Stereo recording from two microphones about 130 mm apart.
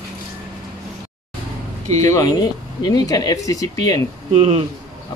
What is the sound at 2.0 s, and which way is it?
Speech, 25° left (ahead or behind).